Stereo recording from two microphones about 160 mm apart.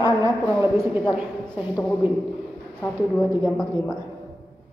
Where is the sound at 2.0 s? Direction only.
10° right (ahead or behind).